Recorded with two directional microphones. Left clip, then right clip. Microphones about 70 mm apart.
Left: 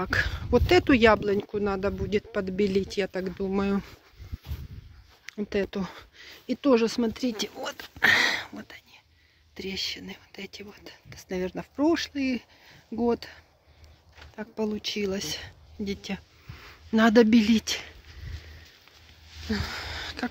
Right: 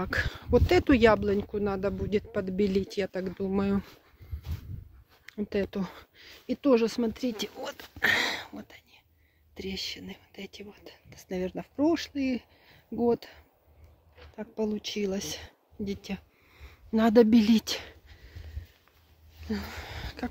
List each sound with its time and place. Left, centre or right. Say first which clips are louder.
0.0 s speech: left 4 dB; right
0.8 s speech: left 2 dB; right
5.2 s speech: left 2 dB; right
7.0 s speech: left 2 dB; centre
8.5 s whispering: left 3 dB; centre
9.6 s speech: left 4 dB; right
15.8 s speech: left 3 dB; centre
19.4 s a sound: left 5 dB; right